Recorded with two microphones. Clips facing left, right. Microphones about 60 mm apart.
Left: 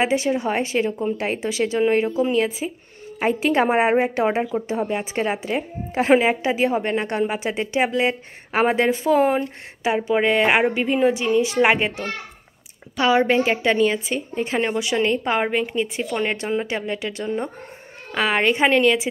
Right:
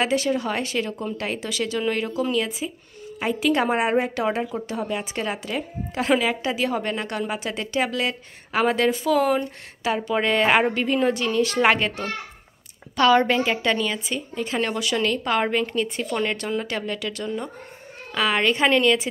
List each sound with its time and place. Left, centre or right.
0.0 s a woman's voice: left